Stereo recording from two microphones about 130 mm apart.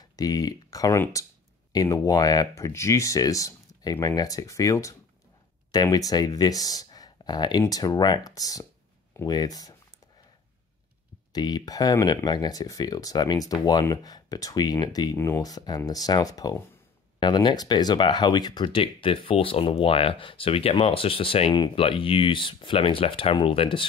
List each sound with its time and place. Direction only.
0.0 s speech: 30° left (ahead or behind)
11.3 s speech: 30° left (ahead or behind)